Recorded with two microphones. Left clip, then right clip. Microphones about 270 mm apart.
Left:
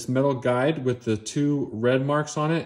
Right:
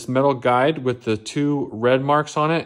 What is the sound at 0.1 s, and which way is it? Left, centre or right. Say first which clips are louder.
Speech: right 5 dB; right.